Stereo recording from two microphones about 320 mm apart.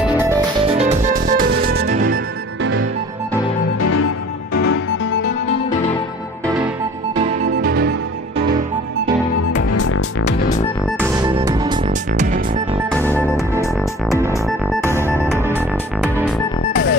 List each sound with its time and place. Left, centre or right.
0.7 s music: right
3.8 s music: left
7.2 s music: centre
9.5 s music: left
11.1 s music: centre
11.9 s music: right
13.2 s music: centre
14.1 s music: centre
14.8 s music: centre
16.0 s music: centre